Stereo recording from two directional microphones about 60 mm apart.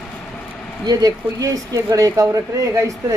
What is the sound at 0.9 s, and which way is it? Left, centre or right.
Speech, right.